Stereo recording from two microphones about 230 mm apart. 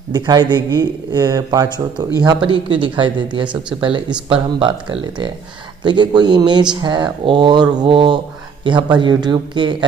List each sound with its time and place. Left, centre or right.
0.1 s speech: centre